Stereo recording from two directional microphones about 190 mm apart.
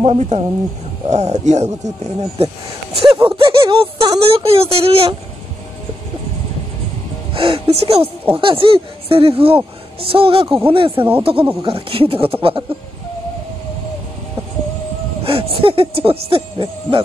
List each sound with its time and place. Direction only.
0.0 s speech: 35° right (ahead or behind)
7.3 s speech: 30° right (ahead or behind)
15.2 s speech: 30° right (ahead or behind)